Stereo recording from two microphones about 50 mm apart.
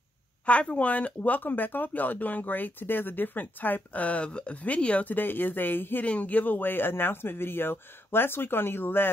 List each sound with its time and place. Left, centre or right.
0.5 s speech: left
5.1 s speech: left
6.0 s speech: left